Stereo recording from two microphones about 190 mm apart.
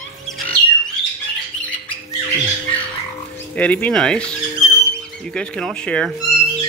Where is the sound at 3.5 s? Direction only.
5° left (ahead or behind).